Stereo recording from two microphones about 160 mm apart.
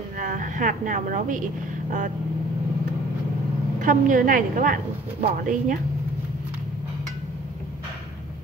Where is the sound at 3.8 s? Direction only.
55° right (ahead or behind).